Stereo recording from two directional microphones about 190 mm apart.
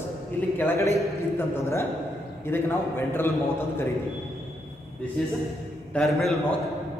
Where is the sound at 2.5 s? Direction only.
10° left (ahead or behind).